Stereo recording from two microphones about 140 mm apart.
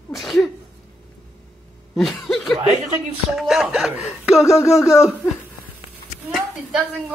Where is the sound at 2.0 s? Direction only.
Centre (ahead or behind).